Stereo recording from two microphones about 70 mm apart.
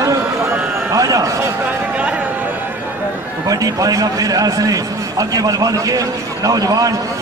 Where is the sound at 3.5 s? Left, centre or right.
Right.